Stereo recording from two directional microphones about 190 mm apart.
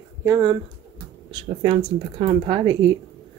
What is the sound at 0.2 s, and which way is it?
Speech, 20° right (ahead or behind).